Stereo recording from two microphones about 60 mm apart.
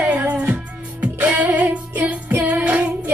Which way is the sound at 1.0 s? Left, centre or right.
Right.